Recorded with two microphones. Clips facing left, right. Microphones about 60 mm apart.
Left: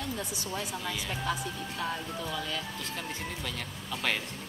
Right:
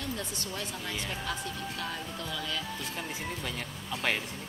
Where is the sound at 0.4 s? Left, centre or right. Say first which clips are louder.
Left 2 dB; centre.